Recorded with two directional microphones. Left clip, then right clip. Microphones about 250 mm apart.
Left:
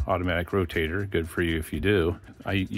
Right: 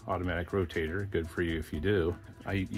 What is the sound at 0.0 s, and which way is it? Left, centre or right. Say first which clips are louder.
Speech: left 7 dB; left.